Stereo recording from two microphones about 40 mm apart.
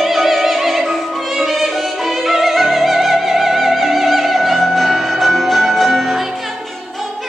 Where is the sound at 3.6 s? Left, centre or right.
Centre.